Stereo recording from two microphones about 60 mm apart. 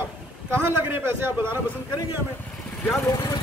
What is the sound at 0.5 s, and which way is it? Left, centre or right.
Speech, right.